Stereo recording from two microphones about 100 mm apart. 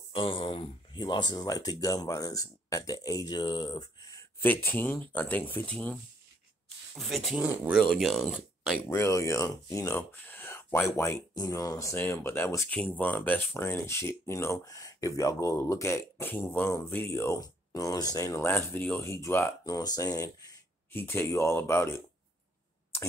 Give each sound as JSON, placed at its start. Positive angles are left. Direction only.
{"t": 0.1, "sound": "speech", "side_deg": 60}
{"t": 4.4, "sound": "speech", "side_deg": 20}
{"t": 7.0, "sound": "speech", "side_deg": 0}
{"t": 8.8, "sound": "speech", "side_deg": 25}
{"t": 11.3, "sound": "speech", "side_deg": 40}
{"t": 12.6, "sound": "speech", "side_deg": 15}
{"t": 20.9, "sound": "speech", "side_deg": 20}